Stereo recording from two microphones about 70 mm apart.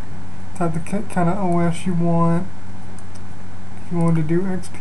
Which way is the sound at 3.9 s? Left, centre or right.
Centre.